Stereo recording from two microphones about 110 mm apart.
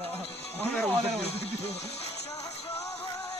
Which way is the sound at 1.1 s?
65° left (ahead or behind).